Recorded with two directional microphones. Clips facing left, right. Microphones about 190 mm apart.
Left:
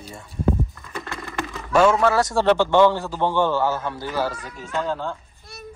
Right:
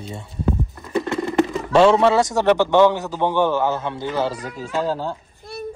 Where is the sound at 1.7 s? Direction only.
30° right (ahead or behind).